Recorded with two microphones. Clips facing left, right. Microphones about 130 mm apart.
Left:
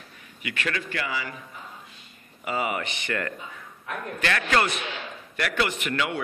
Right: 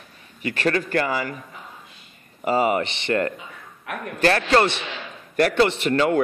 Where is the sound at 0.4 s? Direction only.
35° right (ahead or behind).